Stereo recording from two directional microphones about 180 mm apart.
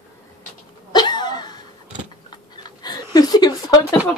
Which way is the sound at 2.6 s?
20° left (ahead or behind).